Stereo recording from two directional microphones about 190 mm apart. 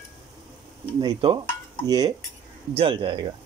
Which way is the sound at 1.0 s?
25° right (ahead or behind).